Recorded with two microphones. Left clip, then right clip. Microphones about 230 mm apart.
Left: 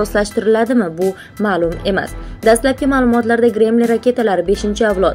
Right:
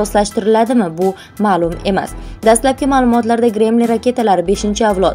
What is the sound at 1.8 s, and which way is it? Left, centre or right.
A woman's voice, centre.